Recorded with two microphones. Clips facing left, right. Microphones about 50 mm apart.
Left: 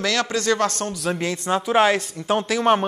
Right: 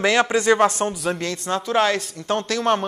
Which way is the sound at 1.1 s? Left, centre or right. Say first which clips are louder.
Left 2 dB; centre.